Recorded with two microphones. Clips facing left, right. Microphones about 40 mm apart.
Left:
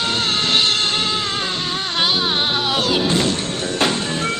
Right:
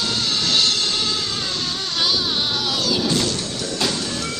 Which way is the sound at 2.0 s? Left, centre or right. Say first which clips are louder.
Left 3 dB; left.